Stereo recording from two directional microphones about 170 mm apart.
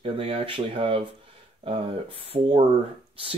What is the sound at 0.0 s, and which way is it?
Speech, 35° right (ahead or behind).